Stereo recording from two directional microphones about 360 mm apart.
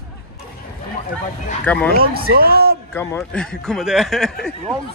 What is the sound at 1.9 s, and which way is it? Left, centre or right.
Speech, right.